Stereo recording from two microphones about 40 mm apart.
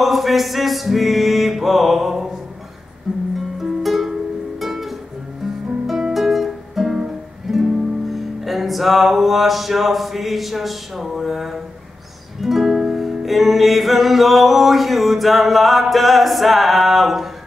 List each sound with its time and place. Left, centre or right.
0.0 s music: centre
3.3 s music: centre
6.1 s music: centre